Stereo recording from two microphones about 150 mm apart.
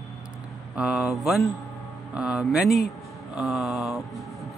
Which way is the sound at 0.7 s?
5° right (ahead or behind).